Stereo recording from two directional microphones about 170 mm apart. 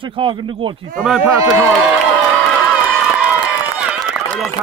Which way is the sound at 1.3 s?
15° right (ahead or behind).